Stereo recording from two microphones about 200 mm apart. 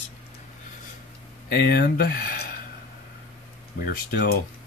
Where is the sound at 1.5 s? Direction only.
50° left (ahead or behind).